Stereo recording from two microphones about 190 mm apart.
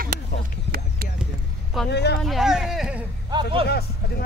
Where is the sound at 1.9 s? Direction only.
60° left (ahead or behind).